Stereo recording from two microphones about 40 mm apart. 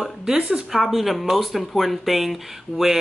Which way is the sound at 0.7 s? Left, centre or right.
Centre.